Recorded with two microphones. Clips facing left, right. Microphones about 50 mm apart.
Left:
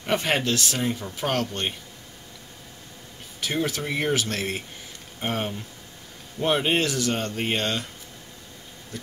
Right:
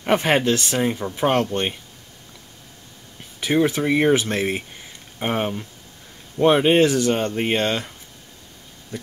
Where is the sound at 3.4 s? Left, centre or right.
Right.